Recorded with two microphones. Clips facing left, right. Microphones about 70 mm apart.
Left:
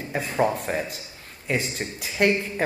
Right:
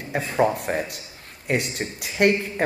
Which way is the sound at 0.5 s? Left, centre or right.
Right.